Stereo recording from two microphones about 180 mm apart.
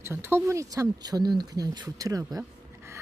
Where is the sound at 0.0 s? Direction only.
15° right (ahead or behind).